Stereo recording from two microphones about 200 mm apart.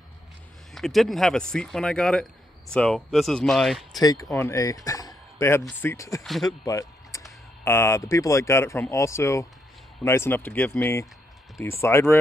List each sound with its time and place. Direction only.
0.7 s speech: centre (ahead or behind)
4.0 s speech: 20° left (ahead or behind)
6.4 s a sound: 20° left (ahead or behind)
7.6 s speech: 15° left (ahead or behind)